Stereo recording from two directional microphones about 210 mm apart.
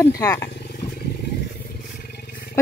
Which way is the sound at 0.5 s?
50° left (ahead or behind).